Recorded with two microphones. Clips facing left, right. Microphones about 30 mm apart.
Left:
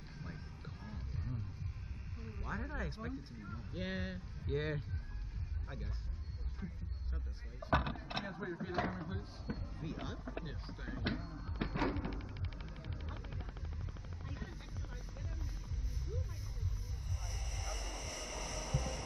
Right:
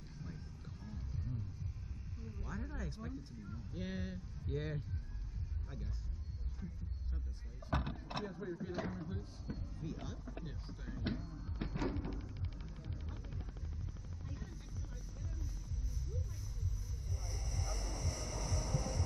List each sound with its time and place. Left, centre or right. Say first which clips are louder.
0.2 s music: left 1 dB; left
2.2 s speech: left 4 dB; left
7.6 s a sound: left 6 dB; left